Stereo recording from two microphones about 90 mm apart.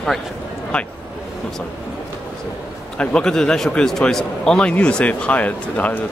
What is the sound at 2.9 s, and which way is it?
A man's voice, 10° left (ahead or behind).